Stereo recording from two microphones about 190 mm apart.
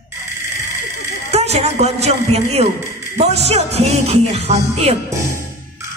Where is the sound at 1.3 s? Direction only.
35° right (ahead or behind).